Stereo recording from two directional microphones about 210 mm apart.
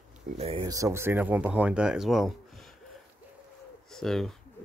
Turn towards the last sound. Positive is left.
turn(degrees=0)  # may be behind; listen again after turning